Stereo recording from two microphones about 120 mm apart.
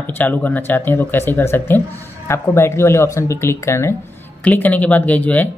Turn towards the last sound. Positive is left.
turn(degrees=15)  # may be behind; listen again after turning